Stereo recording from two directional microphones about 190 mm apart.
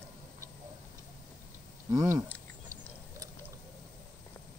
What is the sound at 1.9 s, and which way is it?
Speech, 20° right (ahead or behind).